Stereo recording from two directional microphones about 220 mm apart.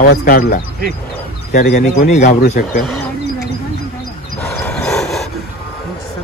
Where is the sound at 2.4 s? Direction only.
45° left (ahead or behind).